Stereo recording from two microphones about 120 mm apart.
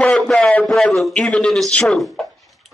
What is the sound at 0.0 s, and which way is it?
A man's voice, 5° left (ahead or behind).